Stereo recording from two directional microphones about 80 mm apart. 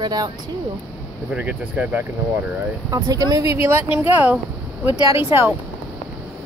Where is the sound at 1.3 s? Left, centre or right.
Centre.